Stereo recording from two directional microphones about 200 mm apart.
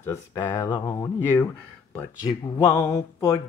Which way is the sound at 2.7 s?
15° left (ahead or behind).